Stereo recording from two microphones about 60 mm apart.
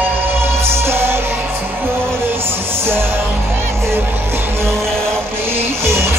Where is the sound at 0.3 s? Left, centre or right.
Right.